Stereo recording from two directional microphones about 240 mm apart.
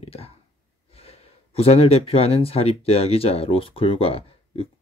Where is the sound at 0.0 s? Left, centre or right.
Left.